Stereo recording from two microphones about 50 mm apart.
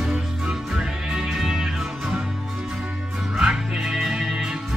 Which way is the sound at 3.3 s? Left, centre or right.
Centre.